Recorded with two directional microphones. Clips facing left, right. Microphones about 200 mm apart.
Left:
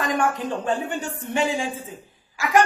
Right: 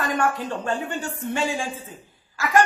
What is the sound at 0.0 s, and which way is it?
A man's voice, 15° left (ahead or behind).